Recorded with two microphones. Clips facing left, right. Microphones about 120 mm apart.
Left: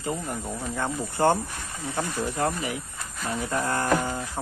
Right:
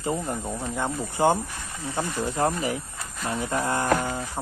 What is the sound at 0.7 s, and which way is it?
Speech, 15° right (ahead or behind).